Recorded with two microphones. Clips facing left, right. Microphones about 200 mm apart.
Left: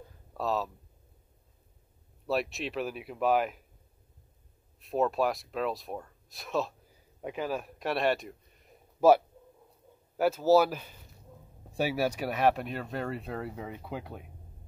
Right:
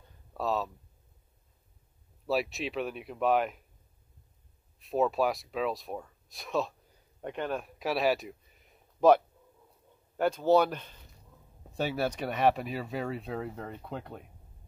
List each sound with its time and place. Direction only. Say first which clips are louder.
0.3 s speech: even; centre (ahead or behind)
2.2 s speech: right 1 dB; centre (ahead or behind)
4.7 s a man's voice: even; centre (ahead or behind)